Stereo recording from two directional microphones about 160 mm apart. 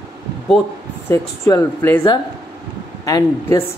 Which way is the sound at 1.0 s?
15° left (ahead or behind).